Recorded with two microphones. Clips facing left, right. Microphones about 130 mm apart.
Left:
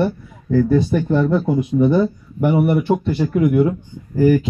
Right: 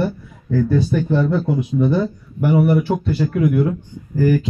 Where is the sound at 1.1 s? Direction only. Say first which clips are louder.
Left 3 dB; centre (ahead or behind).